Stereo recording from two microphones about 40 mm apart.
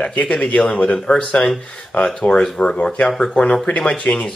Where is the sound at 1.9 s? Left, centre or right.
Left.